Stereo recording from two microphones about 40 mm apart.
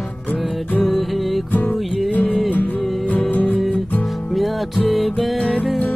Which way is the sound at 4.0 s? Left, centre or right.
Centre.